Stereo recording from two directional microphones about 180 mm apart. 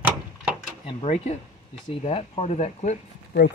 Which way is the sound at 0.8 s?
35° left (ahead or behind).